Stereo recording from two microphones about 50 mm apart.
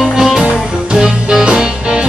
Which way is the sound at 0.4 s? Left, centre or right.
Centre.